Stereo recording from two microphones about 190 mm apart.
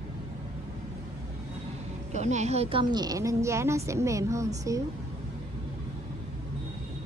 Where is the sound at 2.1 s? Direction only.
40° right (ahead or behind); by 4.5 s 15° right (ahead or behind).